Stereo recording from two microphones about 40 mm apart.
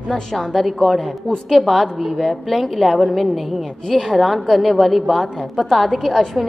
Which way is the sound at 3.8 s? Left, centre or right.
Centre.